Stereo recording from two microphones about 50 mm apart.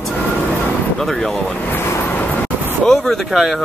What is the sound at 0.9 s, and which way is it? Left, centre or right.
Speech, centre.